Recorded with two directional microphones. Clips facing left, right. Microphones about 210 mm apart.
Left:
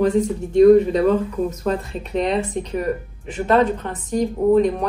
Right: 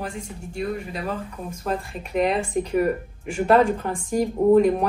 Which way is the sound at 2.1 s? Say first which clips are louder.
Left 1 dB; 10° right (ahead or behind).